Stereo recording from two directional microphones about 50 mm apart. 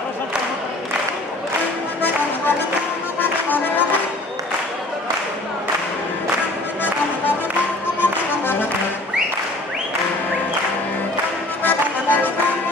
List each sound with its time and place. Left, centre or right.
3.2 s music: left
8.0 s music: left
11.6 s music: left